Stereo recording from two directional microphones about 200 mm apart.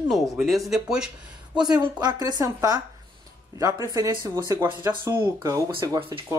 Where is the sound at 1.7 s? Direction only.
20° right (ahead or behind).